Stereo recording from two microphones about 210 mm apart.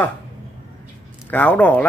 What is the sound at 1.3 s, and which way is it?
Speech, 5° left (ahead or behind).